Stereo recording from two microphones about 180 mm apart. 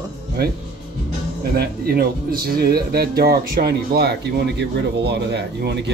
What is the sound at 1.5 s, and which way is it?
A man's voice, 55° right (ahead or behind).